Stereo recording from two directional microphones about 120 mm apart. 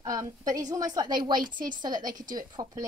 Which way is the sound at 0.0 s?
30° right (ahead or behind).